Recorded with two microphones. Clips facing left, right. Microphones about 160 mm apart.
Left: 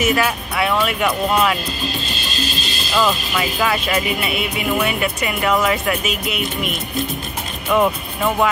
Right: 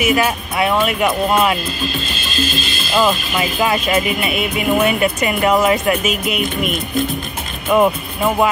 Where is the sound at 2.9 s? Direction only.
10° right (ahead or behind).